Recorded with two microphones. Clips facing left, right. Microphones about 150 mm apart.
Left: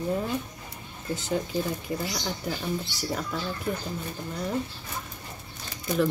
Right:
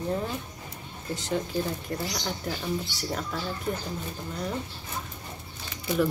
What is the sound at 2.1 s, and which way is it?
Speech, centre (ahead or behind).